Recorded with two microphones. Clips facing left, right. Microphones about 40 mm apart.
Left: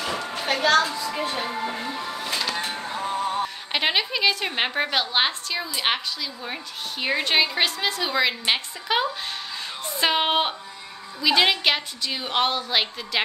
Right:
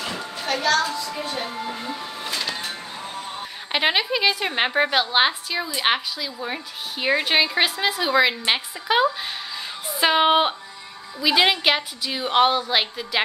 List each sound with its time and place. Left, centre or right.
0.4 s a child's voice: centre
1.9 s music: centre
3.7 s a woman's voice: centre